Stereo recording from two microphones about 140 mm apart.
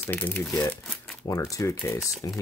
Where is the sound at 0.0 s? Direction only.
10° left (ahead or behind).